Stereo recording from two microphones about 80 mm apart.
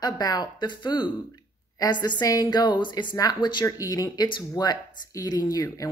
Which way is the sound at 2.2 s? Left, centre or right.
Left.